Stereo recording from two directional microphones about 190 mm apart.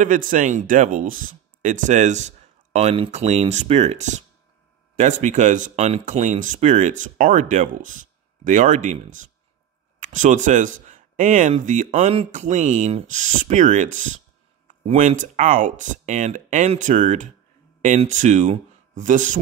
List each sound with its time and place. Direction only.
0.0 s speech: 45° right (ahead or behind)